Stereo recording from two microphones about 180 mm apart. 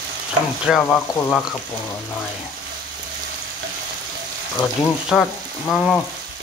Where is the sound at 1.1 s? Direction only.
15° left (ahead or behind).